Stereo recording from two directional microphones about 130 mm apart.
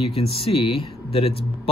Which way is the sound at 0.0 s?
45° left (ahead or behind).